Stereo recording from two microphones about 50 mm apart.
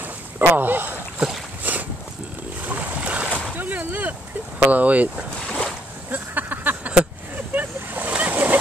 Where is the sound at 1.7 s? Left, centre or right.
Right.